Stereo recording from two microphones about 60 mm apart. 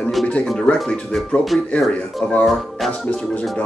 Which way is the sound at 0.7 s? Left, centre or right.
Centre.